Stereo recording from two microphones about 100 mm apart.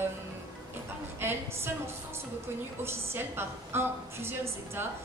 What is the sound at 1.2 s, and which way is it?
A woman's voice, 25° right (ahead or behind).